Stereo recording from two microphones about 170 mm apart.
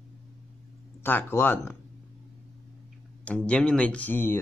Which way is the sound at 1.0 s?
10° left (ahead or behind).